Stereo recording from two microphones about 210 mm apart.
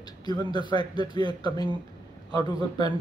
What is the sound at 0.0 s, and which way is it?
Speech, 20° left (ahead or behind).